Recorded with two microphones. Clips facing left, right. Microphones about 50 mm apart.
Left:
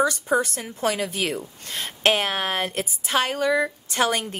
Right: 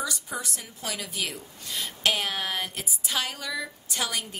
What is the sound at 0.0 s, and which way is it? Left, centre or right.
A woman's voice, left.